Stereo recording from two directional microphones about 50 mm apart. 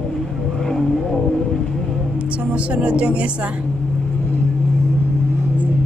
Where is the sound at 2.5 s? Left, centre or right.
Right.